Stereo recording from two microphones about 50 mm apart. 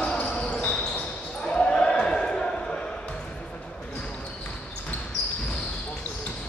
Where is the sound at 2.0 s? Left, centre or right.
Centre.